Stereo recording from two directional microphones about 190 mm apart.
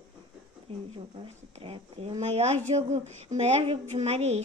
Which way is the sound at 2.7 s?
35° right (ahead or behind).